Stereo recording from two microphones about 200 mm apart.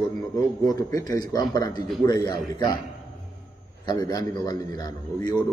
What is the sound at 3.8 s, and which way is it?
A man's voice, 20° left (ahead or behind).